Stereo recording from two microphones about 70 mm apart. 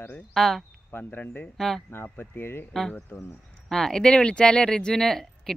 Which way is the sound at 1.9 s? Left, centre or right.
Left.